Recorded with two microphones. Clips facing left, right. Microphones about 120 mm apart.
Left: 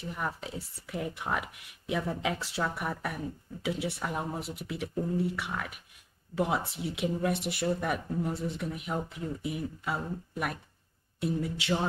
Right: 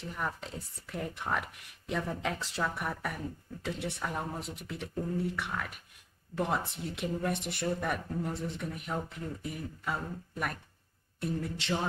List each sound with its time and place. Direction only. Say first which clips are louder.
0.0 s speech: left 1 dB; 5° left (ahead or behind)
11.4 s music: left 3 dB; 5° left (ahead or behind)